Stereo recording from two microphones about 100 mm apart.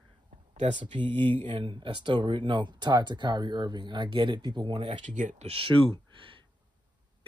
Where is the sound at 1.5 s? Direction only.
55° right (ahead or behind).